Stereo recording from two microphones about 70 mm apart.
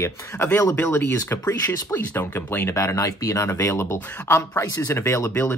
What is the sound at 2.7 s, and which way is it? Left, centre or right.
Speech, left.